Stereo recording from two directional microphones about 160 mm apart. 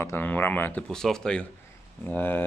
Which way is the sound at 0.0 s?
10° left (ahead or behind).